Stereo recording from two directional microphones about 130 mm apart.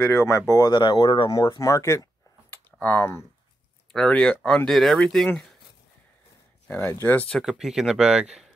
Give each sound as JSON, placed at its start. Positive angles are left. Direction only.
{"t": 0.0, "sound": "speech", "side_deg": 20}
{"t": 0.7, "sound": "speech", "side_deg": 40}
{"t": 1.6, "sound": "speech", "side_deg": 25}
{"t": 2.5, "sound": "a sound", "side_deg": 15}
{"t": 3.9, "sound": "speech", "side_deg": 5}
{"t": 6.7, "sound": "speech", "side_deg": 20}
{"t": 7.2, "sound": "speech", "side_deg": 0}